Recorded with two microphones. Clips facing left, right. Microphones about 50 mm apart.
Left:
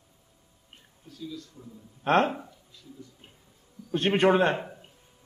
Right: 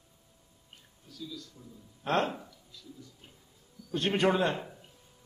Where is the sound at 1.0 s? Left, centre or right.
Left.